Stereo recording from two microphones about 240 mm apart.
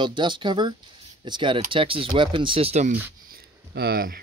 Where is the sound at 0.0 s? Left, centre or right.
Centre.